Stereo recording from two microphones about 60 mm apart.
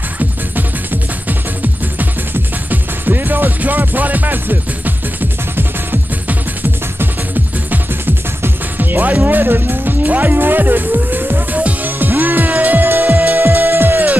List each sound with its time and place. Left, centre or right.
2.7 s music: right
8.4 s speech: right
11.1 s music: right